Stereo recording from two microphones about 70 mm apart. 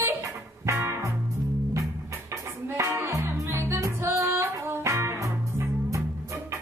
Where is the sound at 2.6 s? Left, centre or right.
Right.